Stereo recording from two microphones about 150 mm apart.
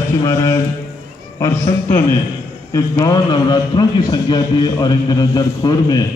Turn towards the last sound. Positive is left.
turn(degrees=25)  # may be behind; listen again after turning